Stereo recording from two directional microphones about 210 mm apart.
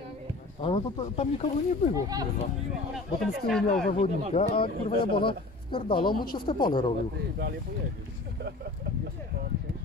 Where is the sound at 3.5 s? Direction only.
Centre (ahead or behind).